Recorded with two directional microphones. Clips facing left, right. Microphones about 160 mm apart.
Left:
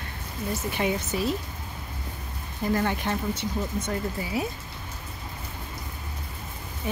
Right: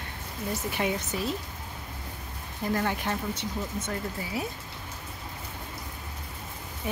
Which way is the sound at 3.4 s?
15° left (ahead or behind).